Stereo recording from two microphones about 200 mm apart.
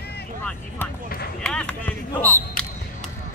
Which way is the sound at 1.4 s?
5° left (ahead or behind).